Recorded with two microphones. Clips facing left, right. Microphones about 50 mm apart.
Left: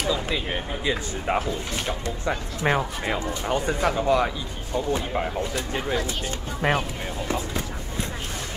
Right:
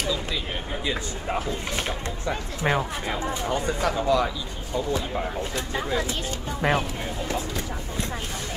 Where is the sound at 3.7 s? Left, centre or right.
Left.